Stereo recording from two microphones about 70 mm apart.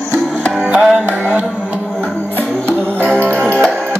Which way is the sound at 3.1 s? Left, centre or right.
Centre.